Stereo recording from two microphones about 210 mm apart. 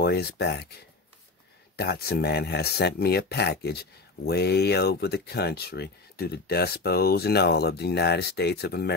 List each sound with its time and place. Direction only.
0.0 s speech: 50° left (ahead or behind)